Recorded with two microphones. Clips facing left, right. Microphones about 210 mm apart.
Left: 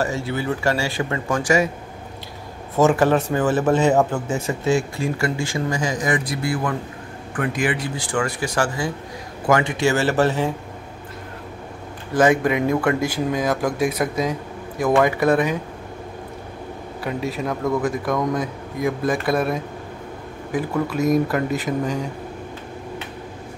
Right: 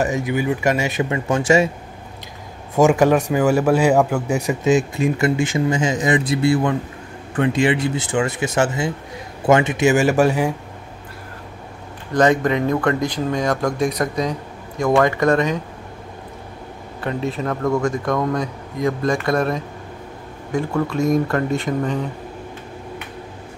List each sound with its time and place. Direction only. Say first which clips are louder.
0.0 s speech: right 3 dB; 15° right (ahead or behind)
2.8 s speech: right 2 dB; 15° right (ahead or behind)
12.1 s speech: right 1 dB; 5° left (ahead or behind)
17.0 s speech: right 2 dB; centre (ahead or behind)